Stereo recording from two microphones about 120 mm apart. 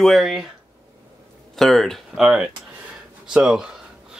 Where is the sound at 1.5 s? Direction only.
5° left (ahead or behind).